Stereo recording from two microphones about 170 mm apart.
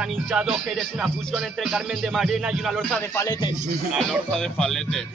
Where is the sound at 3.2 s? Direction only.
20° left (ahead or behind).